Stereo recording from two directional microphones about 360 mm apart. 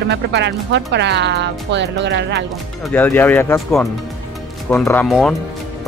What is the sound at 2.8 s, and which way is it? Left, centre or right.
Speech, centre.